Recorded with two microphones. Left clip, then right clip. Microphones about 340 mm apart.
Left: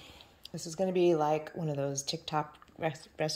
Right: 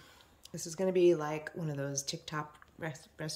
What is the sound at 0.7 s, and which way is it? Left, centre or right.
Speech, centre.